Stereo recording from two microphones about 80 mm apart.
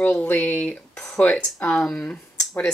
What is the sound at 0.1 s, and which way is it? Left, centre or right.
Speech, centre.